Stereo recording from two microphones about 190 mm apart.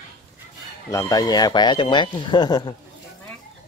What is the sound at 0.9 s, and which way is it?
Speech, 15° left (ahead or behind).